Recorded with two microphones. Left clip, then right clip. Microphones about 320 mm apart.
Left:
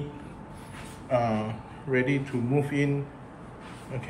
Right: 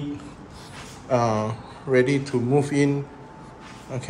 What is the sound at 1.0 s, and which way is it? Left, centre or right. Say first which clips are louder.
Speech: right 5 dB; centre.